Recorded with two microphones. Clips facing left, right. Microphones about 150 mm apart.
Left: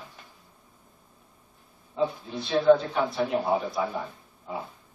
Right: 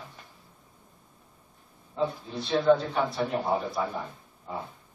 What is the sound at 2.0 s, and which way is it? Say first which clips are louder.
Speech: left 2 dB; 5° left (ahead or behind).